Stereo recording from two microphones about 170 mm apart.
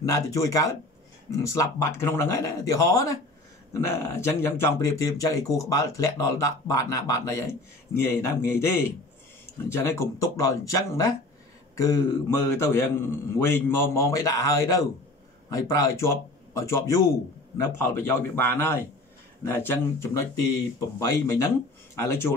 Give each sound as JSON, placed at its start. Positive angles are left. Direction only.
{"t": 0.0, "sound": "a man's voice", "side_deg": 20}
{"t": 9.7, "sound": "a man's voice", "side_deg": 15}